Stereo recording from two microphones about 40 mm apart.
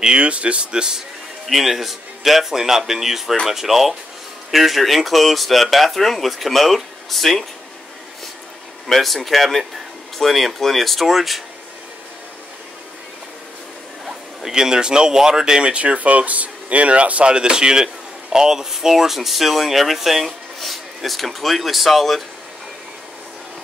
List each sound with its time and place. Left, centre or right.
0.0 s speech: right
1.5 s speech: centre
8.8 s speech: centre
14.0 s speech: centre
15.7 s speech: right; by 22.2 s centre